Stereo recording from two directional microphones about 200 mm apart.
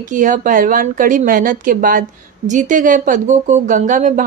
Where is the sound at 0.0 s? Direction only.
40° right (ahead or behind).